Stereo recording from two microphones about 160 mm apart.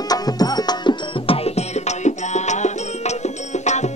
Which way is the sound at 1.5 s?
45° left (ahead or behind).